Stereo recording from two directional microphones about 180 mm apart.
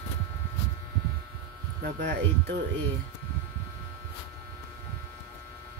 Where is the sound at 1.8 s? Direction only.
60° right (ahead or behind).